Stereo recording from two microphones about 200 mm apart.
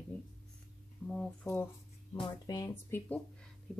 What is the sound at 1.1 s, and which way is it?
Speech, 5° left (ahead or behind).